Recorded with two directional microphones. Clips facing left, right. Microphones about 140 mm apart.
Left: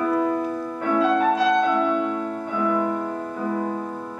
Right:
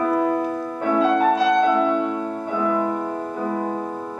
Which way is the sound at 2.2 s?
30° right (ahead or behind).